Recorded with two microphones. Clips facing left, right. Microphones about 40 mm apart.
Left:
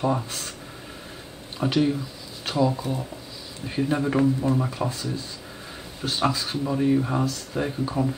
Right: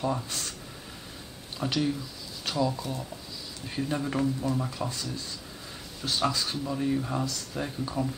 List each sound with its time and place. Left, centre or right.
0.0 s speech: left
1.6 s speech: left